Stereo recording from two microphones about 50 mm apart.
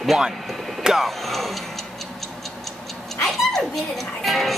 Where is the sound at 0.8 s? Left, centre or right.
Centre.